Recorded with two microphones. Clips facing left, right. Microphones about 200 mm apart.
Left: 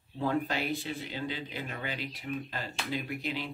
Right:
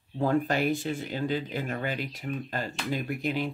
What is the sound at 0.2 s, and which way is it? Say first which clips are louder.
Speech: right 5 dB; 45° right (ahead or behind).